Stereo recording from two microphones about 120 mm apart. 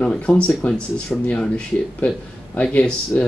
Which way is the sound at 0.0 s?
5° left (ahead or behind).